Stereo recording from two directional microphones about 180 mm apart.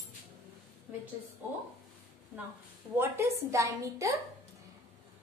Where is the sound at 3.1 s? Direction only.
15° right (ahead or behind).